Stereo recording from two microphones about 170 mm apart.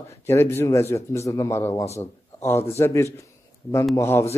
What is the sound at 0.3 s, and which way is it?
A man's voice, 15° left (ahead or behind).